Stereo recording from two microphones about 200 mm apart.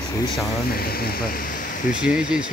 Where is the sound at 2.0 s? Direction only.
5° right (ahead or behind).